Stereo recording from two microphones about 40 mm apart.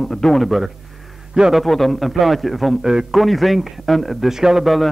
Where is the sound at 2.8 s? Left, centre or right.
Centre.